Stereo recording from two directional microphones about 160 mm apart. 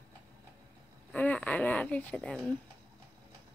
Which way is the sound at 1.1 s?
10° left (ahead or behind).